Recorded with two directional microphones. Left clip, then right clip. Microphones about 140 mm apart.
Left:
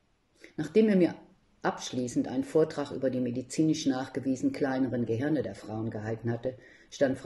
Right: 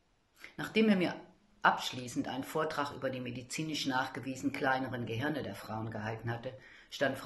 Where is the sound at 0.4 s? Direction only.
45° left (ahead or behind).